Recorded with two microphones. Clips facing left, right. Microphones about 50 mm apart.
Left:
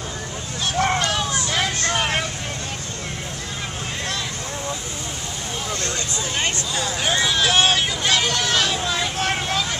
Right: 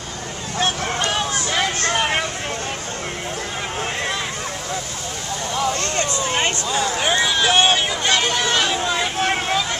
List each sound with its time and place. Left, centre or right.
1.0 s vehicle: centre
6.3 s a sound: right
7.0 s hubbub: centre